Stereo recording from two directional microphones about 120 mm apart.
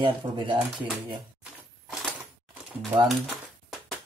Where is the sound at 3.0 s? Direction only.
Centre (ahead or behind).